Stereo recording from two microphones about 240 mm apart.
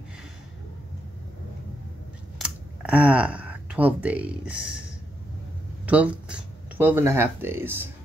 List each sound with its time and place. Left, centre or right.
2.3 s speech: centre
5.9 s speech: centre